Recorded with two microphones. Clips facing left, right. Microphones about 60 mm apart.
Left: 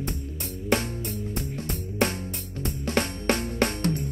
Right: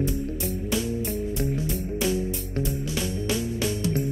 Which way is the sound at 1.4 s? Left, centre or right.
Left.